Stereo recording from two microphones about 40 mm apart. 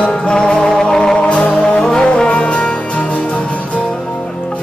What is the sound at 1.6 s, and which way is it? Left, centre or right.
Brass instrument, centre.